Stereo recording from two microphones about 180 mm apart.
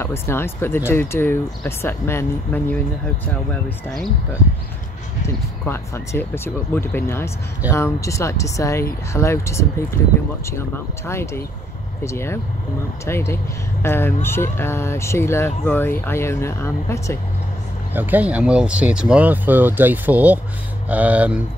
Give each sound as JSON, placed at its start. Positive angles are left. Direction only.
{"t": 0.0, "sound": "speech", "side_deg": 15}
{"t": 5.2, "sound": "speech", "side_deg": 15}
{"t": 11.1, "sound": "speech", "side_deg": 15}
{"t": 17.9, "sound": "speech", "side_deg": -10}